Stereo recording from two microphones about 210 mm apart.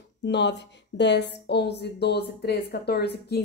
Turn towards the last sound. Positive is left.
turn(degrees=50)  # may be behind; listen again after turning